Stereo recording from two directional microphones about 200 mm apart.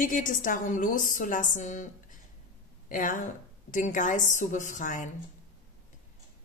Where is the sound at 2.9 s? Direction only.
40° left (ahead or behind).